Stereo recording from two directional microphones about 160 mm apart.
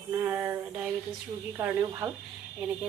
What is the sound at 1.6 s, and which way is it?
Speech, 15° right (ahead or behind).